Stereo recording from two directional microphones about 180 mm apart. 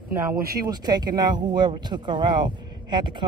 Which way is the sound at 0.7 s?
25° right (ahead or behind).